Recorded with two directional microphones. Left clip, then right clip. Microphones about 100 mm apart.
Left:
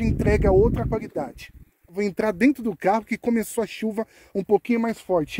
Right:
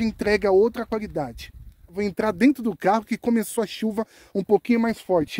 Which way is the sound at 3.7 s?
30° right (ahead or behind).